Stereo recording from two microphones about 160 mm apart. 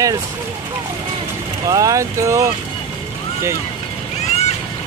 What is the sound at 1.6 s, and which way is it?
Speech, 20° right (ahead or behind).